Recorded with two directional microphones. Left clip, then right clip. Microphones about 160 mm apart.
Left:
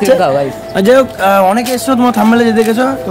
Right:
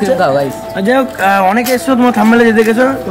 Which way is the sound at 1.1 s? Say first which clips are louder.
Left 1 dB; 15° left (ahead or behind).